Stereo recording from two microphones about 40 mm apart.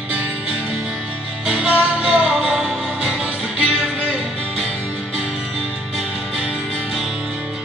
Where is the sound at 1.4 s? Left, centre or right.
Centre.